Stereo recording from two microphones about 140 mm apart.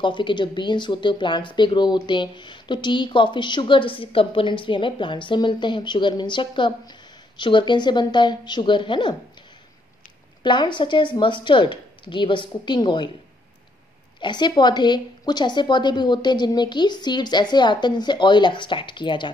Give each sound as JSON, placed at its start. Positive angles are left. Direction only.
{"t": 0.0, "sound": "speech", "side_deg": 35}
{"t": 10.4, "sound": "speech", "side_deg": 35}
{"t": 14.2, "sound": "speech", "side_deg": 30}